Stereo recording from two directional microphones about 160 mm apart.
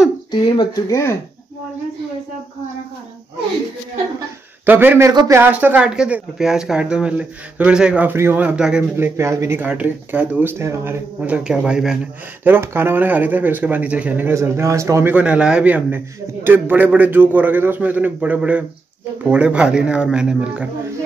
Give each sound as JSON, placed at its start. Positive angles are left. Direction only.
{"t": 0.3, "sound": "speech", "side_deg": 25}
{"t": 4.6, "sound": "speech", "side_deg": -15}
{"t": 8.9, "sound": "speech", "side_deg": -15}